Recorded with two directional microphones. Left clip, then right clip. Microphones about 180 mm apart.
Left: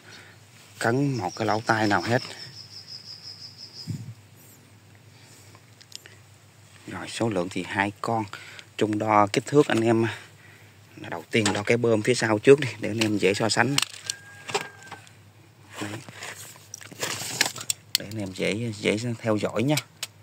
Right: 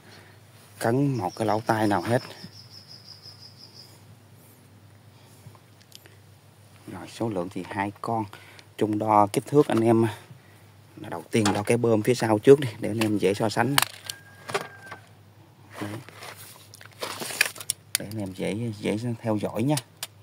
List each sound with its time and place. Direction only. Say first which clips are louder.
0.7 s speech: even; 15° right (ahead or behind)
5.9 s a sound: left 6 dB; 10° right (ahead or behind)
6.9 s speech: left 3 dB; centre (ahead or behind)
9.8 s speech: right 1 dB; 15° right (ahead or behind)
14.1 s keys jangling: left 4 dB; 35° right (ahead or behind)
15.7 s zipper: left 1 dB; 15° left (ahead or behind)
18.0 s speech: left 3 dB; 10° right (ahead or behind)